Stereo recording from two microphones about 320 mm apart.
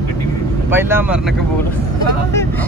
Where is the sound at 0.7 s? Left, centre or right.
Centre.